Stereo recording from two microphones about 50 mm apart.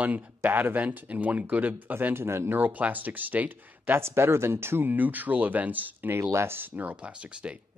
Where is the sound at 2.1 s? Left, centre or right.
Right.